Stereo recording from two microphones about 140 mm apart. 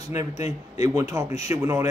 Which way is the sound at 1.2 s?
55° left (ahead or behind).